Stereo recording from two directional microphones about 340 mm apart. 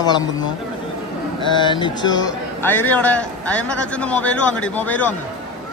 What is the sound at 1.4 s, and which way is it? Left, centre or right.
Speech, centre.